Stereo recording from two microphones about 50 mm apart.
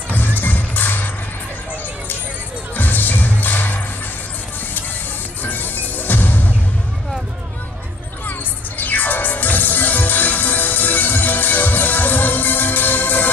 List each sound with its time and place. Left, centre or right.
0.1 s music: left
2.7 s music: left
5.4 s music: left
8.3 s music: left